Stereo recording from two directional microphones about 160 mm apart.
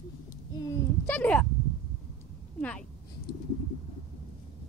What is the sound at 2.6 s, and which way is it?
Speech, 10° left (ahead or behind).